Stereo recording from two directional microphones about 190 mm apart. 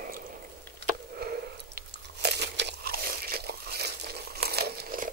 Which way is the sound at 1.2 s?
55° right (ahead or behind).